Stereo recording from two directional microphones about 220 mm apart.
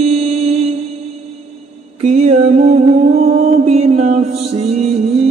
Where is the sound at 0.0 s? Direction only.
30° right (ahead or behind).